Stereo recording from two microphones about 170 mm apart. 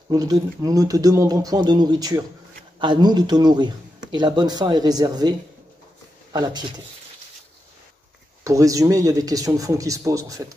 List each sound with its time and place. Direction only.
0.1 s speech: 20° right (ahead or behind)
6.3 s speech: 25° right (ahead or behind)
8.5 s speech: 20° right (ahead or behind)